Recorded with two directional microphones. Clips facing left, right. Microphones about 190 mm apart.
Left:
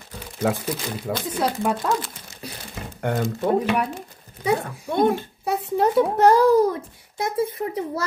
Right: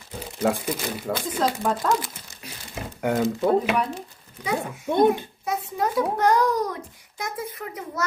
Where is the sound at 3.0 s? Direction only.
5° right (ahead or behind).